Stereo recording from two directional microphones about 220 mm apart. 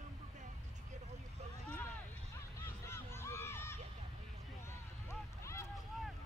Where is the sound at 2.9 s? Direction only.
10° left (ahead or behind).